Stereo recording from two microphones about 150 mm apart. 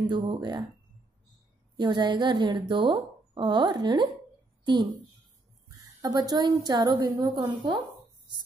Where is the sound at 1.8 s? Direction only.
30° right (ahead or behind).